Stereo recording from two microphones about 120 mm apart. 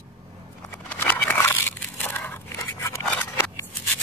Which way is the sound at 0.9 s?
10° left (ahead or behind).